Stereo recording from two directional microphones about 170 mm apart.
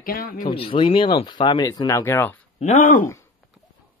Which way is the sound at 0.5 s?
30° left (ahead or behind).